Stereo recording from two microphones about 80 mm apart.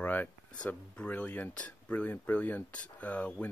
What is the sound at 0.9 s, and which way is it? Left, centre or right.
Speech, centre.